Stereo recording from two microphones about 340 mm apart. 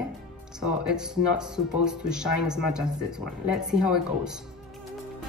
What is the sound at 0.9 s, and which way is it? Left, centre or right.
Speech, centre.